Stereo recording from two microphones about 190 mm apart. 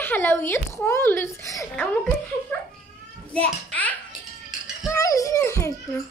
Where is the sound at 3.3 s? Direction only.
10° left (ahead or behind).